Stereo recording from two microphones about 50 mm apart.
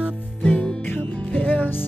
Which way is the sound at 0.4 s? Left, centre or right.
Left.